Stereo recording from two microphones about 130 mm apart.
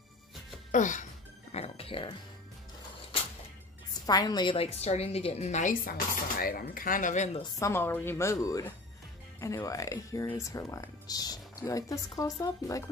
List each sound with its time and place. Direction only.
0.7 s speech: 75° left (ahead or behind)
1.5 s a woman's voice: 50° left (ahead or behind)
4.0 s a woman's voice: 30° left (ahead or behind); by 5.8 s 65° left (ahead or behind)
6.3 s speech: 90° left
7.5 s speech: 20° left (ahead or behind)